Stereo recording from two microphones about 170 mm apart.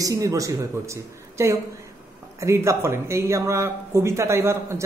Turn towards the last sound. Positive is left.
turn(degrees=-15)  # may be behind; listen again after turning